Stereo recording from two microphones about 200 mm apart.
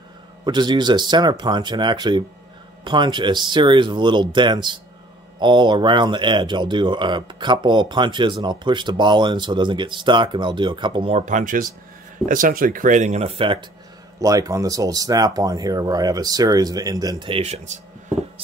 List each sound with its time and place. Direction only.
0.5 s speech: 20° right (ahead or behind)